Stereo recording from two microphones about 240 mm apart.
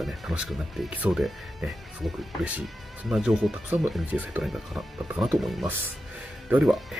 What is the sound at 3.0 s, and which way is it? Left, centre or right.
Speech, centre.